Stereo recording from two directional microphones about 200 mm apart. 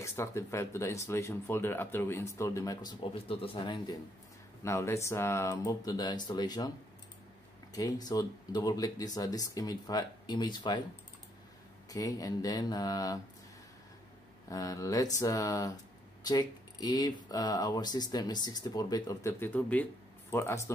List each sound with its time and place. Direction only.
0.0 s speech: 15° left (ahead or behind)
7.7 s speech: 20° left (ahead or behind)
11.9 s speech: 15° left (ahead or behind)
14.5 s speech: 15° left (ahead or behind)